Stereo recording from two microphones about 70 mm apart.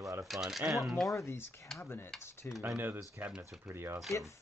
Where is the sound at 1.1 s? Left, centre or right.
Left.